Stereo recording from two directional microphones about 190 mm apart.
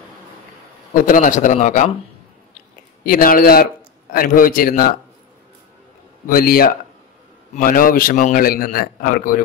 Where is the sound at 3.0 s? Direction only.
50° left (ahead or behind).